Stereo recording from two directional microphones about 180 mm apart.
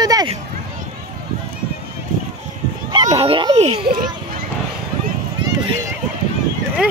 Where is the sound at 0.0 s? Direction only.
20° right (ahead or behind).